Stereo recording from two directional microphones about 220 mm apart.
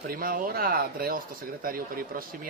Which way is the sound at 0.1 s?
40° right (ahead or behind).